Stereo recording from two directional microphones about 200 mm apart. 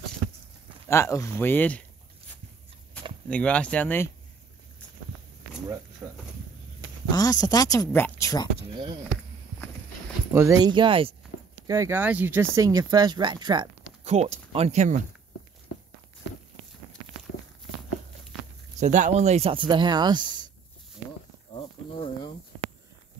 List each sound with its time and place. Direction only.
0.8 s speech: 15° left (ahead or behind)
3.3 s speech: 5° left (ahead or behind)
6.0 s speech: 10° right (ahead or behind)
7.1 s speech: 20° left (ahead or behind)
10.3 s speech: 15° right (ahead or behind)
11.6 s speech: 15° right (ahead or behind)
14.0 s speech: 35° right (ahead or behind)
18.8 s speech: 35° right (ahead or behind); by 20.4 s 20° right (ahead or behind)